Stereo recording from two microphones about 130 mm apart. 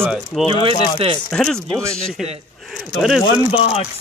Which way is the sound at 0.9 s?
45° right (ahead or behind).